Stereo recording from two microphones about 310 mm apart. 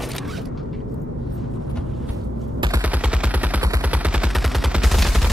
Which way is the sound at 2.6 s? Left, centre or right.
Centre.